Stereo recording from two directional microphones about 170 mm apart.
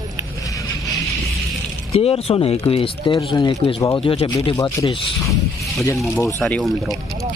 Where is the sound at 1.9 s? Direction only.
35° left (ahead or behind).